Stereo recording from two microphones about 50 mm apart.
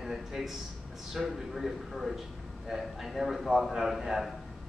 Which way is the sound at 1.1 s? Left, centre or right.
Centre.